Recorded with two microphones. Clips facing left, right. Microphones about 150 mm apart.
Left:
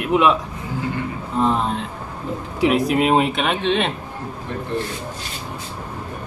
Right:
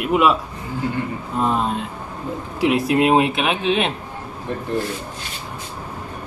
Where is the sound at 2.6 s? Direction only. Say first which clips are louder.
Even; centre (ahead or behind).